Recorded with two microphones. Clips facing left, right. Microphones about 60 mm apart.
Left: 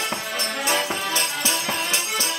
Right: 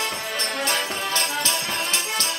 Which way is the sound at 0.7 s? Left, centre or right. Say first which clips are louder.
Left 5 dB; centre.